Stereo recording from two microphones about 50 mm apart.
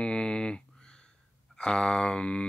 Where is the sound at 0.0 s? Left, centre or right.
Centre.